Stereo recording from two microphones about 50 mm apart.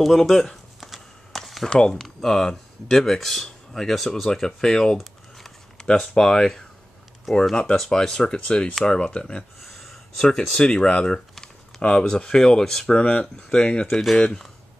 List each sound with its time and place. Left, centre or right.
0.0 s a sound: centre
1.7 s speech: centre
7.3 s speech: centre; by 9.4 s left
9.6 s a sound: centre
10.1 s speech: centre
12.9 s speech: left